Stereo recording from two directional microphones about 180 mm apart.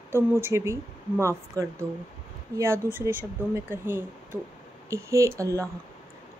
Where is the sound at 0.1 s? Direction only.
15° right (ahead or behind).